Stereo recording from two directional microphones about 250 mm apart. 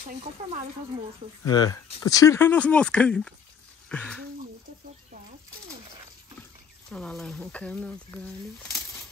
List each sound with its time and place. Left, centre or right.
0.2 s speech: right
1.4 s speech: centre
6.9 s speech: centre